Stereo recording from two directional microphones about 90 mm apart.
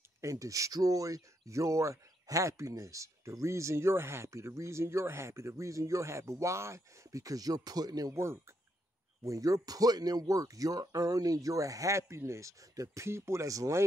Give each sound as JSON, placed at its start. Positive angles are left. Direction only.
{"t": 0.2, "sound": "speech", "side_deg": -40}
{"t": 8.1, "sound": "speech", "side_deg": -30}